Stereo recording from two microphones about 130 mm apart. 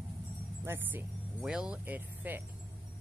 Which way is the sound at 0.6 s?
15° right (ahead or behind).